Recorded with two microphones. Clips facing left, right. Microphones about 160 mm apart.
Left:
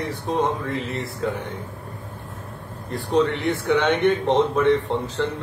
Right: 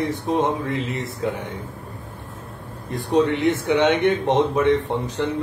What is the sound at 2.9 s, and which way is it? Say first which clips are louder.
A man's voice: right 2 dB; 15° right (ahead or behind).